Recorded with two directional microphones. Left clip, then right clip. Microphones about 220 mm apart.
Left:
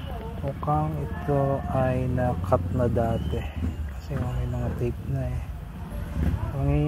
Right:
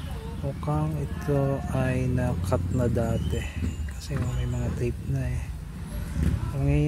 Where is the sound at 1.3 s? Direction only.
20° right (ahead or behind).